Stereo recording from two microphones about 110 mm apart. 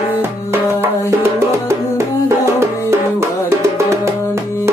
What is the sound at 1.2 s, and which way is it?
Music, 25° right (ahead or behind).